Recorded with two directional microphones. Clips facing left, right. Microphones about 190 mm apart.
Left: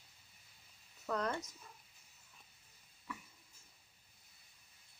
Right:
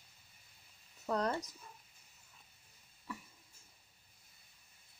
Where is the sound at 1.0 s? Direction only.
35° right (ahead or behind).